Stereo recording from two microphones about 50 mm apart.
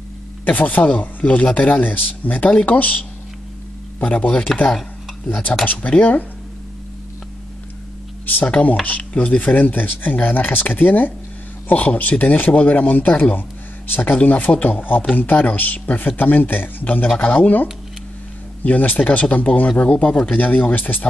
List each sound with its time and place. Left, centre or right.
0.5 s speech: left
4.0 s speech: left
8.5 s speech: left